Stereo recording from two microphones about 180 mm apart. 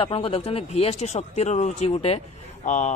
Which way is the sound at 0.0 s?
30° left (ahead or behind).